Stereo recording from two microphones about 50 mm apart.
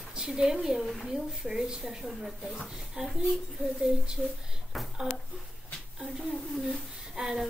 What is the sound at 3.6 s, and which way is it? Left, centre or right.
Speech, centre.